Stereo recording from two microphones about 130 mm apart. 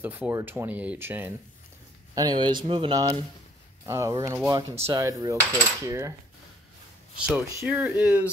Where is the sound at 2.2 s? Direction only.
35° right (ahead or behind).